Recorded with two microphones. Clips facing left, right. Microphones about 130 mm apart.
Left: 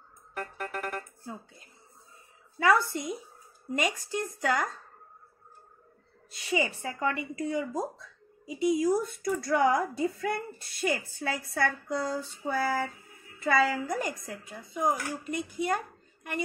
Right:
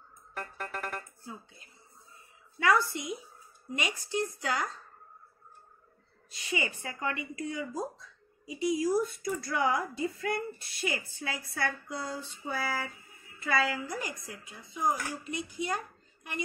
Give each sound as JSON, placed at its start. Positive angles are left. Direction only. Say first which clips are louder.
{"t": 0.4, "sound": "music", "louder": "left 3 dB", "side_deg": 10}
{"t": 2.6, "sound": "a woman's voice", "louder": "left 2 dB", "side_deg": 40}
{"t": 6.5, "sound": "a woman's voice", "louder": "left 5 dB", "side_deg": 35}
{"t": 7.9, "sound": "a sound", "louder": "left 4 dB", "side_deg": 35}
{"t": 8.7, "sound": "a woman's voice", "louder": "left 2 dB", "side_deg": 50}